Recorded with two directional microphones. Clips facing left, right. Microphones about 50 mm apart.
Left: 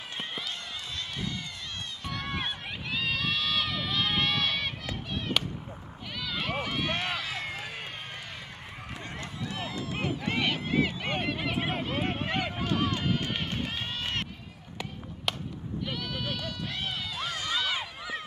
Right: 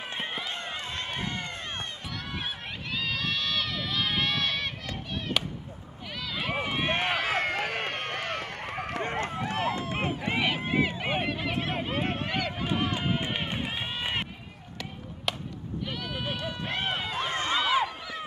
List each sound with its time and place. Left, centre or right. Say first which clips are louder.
0.1 s run: right 2 dB; right
2.3 s run: left 1 dB; centre
6.6 s run: right 3 dB; right
9.0 s run: right 6 dB; right
9.9 s run: right 1 dB; centre
11.3 s run: even; centre
12.0 s a sound: right 1 dB; centre
12.6 s run: left 1 dB; centre
15.3 s chop: right 1 dB; centre
15.9 s sheep: right 1 dB; centre
16.6 s run: right 7 dB; right
17.6 s run: right 8 dB; right